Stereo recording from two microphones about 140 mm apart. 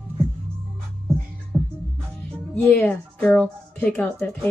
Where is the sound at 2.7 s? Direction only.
10° left (ahead or behind).